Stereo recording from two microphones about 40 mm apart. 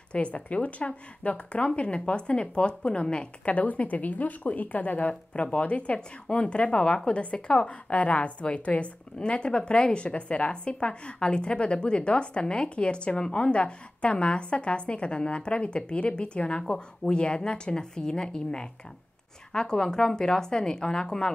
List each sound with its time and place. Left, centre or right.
0.1 s a woman's voice: left
16.6 s a woman's voice: centre